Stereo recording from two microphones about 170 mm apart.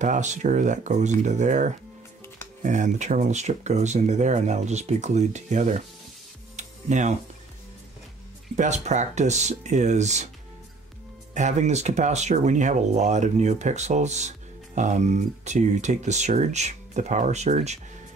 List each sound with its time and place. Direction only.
0.0 s speech: 45° right (ahead or behind)
6.5 s music: 45° right (ahead or behind)
8.5 s speech: 45° right (ahead or behind)
11.3 s speech: 45° right (ahead or behind)